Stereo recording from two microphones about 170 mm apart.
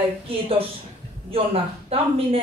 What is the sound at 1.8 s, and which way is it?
Speech, 35° right (ahead or behind).